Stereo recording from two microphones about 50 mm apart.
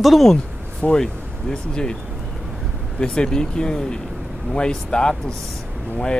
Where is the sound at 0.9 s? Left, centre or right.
Centre.